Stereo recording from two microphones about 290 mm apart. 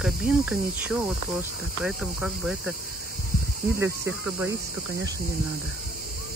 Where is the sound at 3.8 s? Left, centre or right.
Centre.